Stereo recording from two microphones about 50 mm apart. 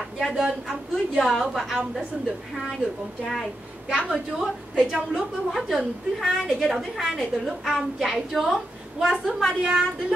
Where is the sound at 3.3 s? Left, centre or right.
Centre.